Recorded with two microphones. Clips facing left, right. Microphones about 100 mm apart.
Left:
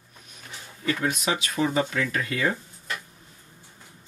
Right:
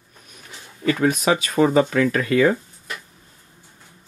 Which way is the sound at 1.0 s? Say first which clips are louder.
Right 10 dB; 45° right (ahead or behind).